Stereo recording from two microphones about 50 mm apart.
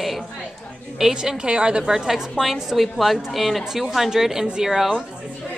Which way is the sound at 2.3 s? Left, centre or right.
Centre.